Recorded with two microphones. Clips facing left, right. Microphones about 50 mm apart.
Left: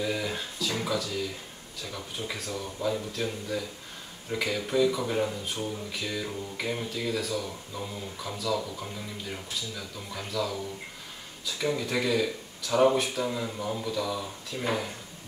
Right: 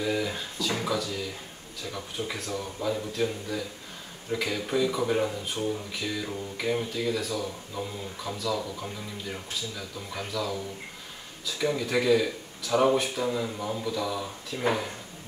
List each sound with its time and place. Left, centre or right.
0.0 s a sound: centre
1.9 s speech: centre
14.5 s speech: centre